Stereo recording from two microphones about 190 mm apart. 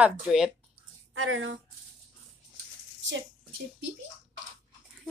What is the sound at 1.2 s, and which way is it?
Speech, 90° right.